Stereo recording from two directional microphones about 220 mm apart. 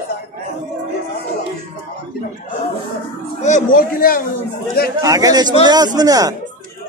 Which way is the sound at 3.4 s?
35° left (ahead or behind).